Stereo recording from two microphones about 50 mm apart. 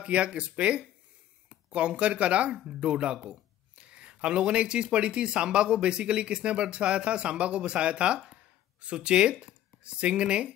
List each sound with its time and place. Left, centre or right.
0.0 s speech: right